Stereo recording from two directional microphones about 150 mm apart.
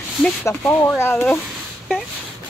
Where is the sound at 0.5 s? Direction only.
15° left (ahead or behind).